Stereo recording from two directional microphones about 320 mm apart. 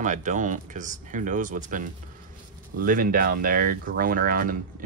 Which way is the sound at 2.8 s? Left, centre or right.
Right.